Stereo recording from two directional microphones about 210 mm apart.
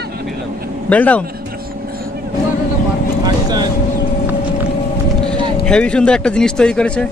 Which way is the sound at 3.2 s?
20° right (ahead or behind).